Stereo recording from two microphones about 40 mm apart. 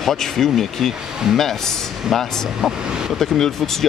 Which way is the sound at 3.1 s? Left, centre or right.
Centre.